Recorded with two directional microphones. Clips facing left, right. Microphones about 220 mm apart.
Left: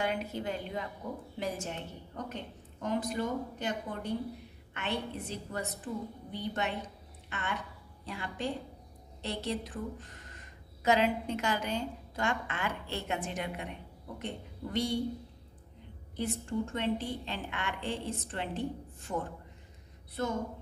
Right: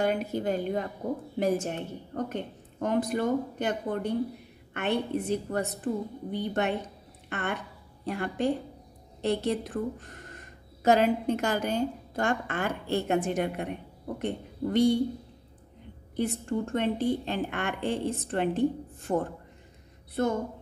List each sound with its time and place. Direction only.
0.0 s a woman's voice: 45° right (ahead or behind)
16.2 s a woman's voice: 55° right (ahead or behind)